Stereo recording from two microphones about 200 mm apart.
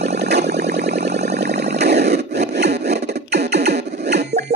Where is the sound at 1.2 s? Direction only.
55° right (ahead or behind).